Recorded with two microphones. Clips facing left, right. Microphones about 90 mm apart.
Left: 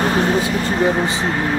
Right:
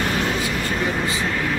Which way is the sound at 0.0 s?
35° left (ahead or behind).